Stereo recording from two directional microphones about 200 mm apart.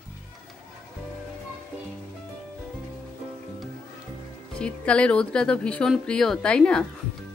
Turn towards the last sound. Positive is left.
turn(degrees=5)  # may be behind; listen again after turning